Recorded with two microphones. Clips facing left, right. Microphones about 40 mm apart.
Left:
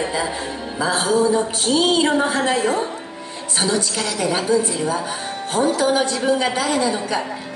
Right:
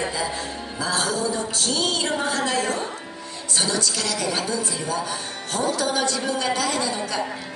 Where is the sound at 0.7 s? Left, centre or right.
Left.